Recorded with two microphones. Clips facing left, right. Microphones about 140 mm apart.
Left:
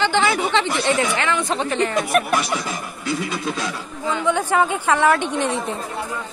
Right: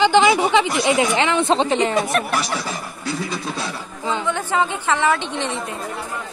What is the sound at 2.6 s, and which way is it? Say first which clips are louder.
Speech: even; 35° right (ahead or behind).